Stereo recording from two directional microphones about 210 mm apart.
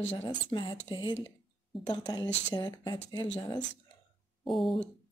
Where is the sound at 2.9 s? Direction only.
30° left (ahead or behind).